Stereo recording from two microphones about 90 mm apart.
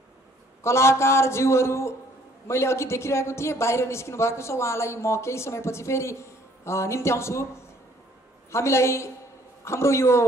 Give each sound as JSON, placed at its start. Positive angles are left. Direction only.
{"t": 0.7, "sound": "speech", "side_deg": 30}
{"t": 8.5, "sound": "speech", "side_deg": 30}